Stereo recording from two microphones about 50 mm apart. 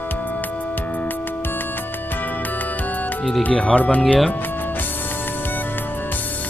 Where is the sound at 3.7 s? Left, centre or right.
Left.